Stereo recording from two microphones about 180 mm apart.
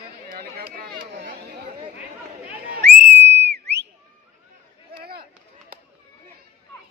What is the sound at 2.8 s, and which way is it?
Whistle, 70° right (ahead or behind).